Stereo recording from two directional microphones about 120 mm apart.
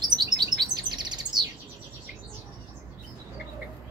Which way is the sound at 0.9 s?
35° right (ahead or behind).